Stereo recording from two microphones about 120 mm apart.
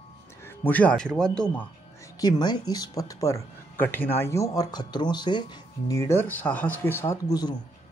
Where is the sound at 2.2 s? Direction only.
35° left (ahead or behind).